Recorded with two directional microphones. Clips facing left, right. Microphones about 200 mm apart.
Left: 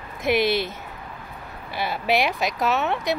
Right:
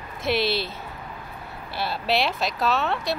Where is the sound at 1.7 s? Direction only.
15° left (ahead or behind).